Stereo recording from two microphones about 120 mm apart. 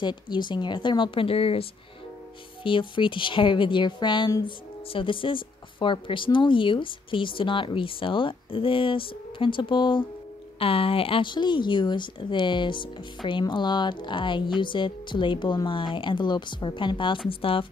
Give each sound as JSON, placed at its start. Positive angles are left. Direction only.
{"t": 0.0, "sound": "speech", "side_deg": 40}